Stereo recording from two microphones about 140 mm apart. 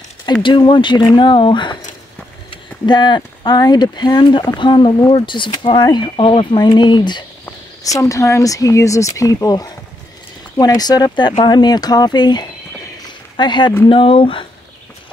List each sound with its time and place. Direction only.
0.3 s speech: 35° left (ahead or behind)
2.5 s a sound: 35° left (ahead or behind)
3.2 s speech: 25° left (ahead or behind)
10.8 s speech: 30° left (ahead or behind)